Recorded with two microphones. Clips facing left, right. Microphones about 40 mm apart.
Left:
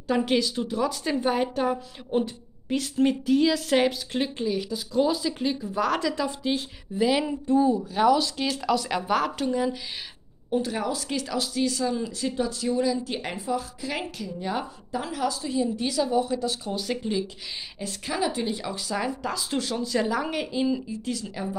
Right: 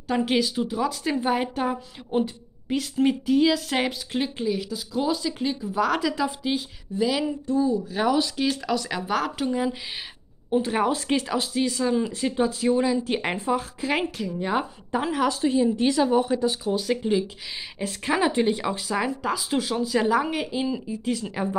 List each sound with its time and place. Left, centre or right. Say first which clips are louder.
0.1 s a woman's voice: even; centre
7.0 s a sound: left 1 dB; centre
7.4 s speech: left 3 dB; left
7.9 s speech: left 2 dB; centre
10.5 s a woman's voice: right 4 dB; right
16.6 s speech: right 5 dB; centre
17.7 s a woman's voice: right 5 dB; right
18.8 s a woman's voice: right 2 dB; centre
21.0 s speech: right 4 dB; right